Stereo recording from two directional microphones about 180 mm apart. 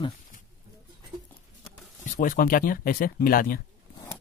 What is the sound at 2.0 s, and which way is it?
Speech, 45° left (ahead or behind).